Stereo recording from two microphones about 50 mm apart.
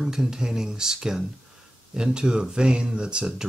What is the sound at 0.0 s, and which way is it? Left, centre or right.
Speech, centre.